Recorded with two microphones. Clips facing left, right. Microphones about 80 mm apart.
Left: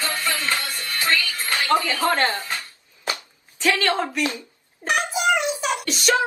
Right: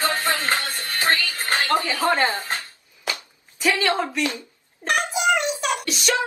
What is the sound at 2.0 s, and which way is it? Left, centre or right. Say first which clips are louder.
Speech: even; centre.